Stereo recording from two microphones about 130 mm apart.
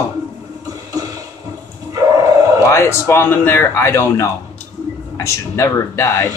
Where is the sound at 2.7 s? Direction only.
20° left (ahead or behind).